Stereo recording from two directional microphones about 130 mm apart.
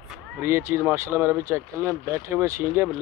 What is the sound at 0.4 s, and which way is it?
Speech, 15° right (ahead or behind).